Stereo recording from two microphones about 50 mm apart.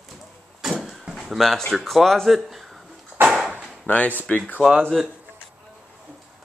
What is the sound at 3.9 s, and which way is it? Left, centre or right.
Speech, left.